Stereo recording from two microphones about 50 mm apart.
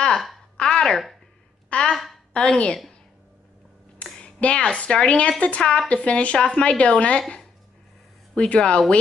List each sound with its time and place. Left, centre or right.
0.6 s a sound: centre
1.7 s speech: centre
4.0 s a woman's voice: left